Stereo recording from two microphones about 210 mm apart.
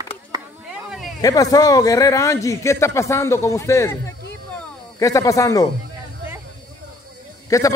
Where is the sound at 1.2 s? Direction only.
15° left (ahead or behind).